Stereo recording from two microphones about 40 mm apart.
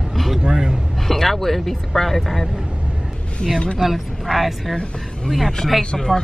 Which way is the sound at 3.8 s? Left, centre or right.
Centre.